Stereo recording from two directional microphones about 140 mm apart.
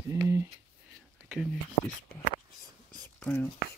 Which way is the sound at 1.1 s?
5° right (ahead or behind).